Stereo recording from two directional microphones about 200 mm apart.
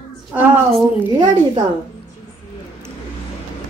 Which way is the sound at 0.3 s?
5° right (ahead or behind).